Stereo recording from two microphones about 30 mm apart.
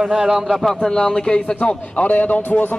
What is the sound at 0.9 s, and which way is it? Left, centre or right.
Speech, left.